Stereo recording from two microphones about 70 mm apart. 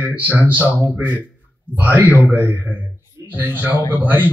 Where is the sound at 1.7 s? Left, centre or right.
Right.